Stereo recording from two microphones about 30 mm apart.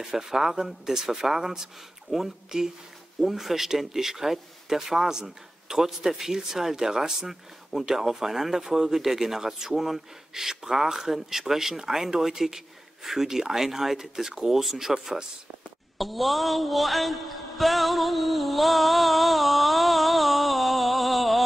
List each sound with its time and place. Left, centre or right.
0.0 s speech: centre
3.2 s speech: centre
7.2 s speech: centre
16.0 s mantra: centre